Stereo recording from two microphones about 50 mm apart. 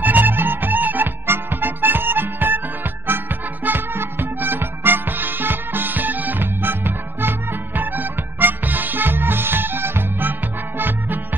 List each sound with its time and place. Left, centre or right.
0.0 s music: right